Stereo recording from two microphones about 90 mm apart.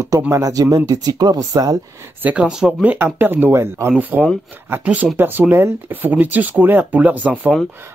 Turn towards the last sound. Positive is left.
turn(degrees=-15)  # may be behind; listen again after turning